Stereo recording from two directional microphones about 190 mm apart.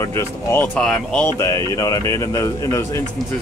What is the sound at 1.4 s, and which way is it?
Speech, 20° left (ahead or behind).